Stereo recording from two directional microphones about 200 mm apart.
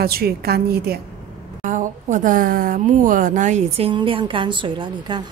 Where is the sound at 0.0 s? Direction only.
50° right (ahead or behind).